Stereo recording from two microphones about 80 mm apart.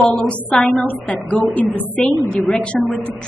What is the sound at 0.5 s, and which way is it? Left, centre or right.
A woman's voice, centre.